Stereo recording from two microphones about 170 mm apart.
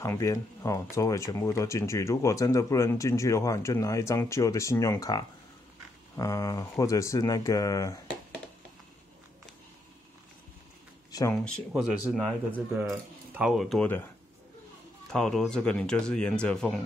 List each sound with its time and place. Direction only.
0.0 s speech: 15° left (ahead or behind)
11.1 s a sound: 20° left (ahead or behind)
11.7 s speech: centre (ahead or behind)
15.1 s speech: 5° left (ahead or behind)